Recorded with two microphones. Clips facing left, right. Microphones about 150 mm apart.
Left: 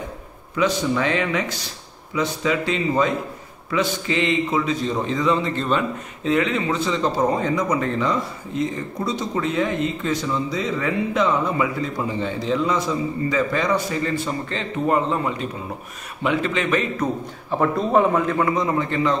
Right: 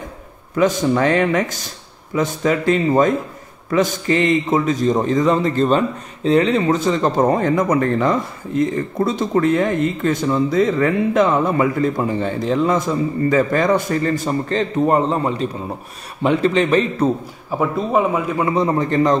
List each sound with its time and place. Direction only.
0.6 s a man's voice: 45° right (ahead or behind); by 17.1 s 30° right (ahead or behind)
17.5 s speech: 5° right (ahead or behind)
18.4 s speech: 30° right (ahead or behind)